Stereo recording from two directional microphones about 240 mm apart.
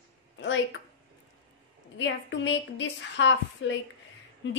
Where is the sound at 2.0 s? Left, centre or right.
Left.